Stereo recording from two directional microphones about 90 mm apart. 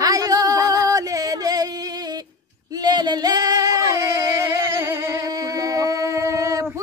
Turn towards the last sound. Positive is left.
turn(degrees=-35)  # may be behind; listen again after turning